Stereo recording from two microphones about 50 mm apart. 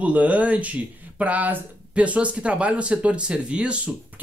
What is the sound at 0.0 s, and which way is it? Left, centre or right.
Speech, right.